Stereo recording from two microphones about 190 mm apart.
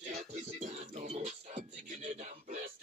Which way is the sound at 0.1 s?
35° right (ahead or behind).